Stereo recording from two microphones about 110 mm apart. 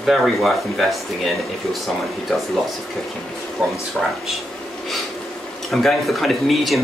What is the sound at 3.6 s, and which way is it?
Speech, 5° right (ahead or behind).